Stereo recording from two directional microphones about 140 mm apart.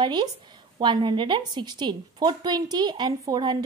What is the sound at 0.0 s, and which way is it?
A woman's voice, 30° right (ahead or behind).